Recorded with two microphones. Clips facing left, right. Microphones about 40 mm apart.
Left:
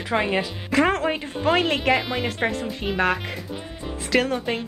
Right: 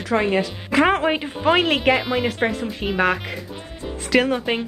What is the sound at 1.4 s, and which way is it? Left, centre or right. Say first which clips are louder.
Speech: right 3 dB; centre.